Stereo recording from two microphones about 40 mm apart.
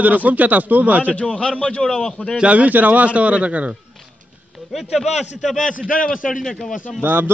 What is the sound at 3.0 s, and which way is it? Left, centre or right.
Speech, right.